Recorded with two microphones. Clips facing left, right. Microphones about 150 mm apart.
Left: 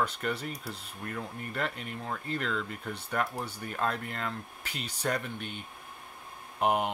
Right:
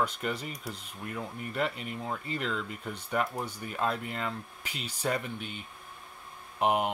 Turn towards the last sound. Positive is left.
turn(degrees=0)  # may be behind; listen again after turning